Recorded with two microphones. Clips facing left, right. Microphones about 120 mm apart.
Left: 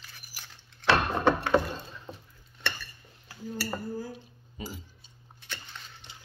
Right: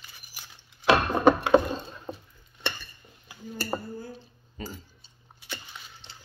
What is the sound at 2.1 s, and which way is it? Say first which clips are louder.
Stir: right 8 dB; 50° right (ahead or behind).